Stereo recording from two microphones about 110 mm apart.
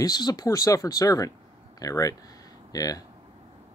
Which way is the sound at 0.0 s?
35° left (ahead or behind).